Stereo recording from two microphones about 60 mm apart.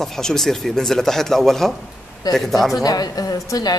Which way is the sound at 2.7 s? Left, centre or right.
Left.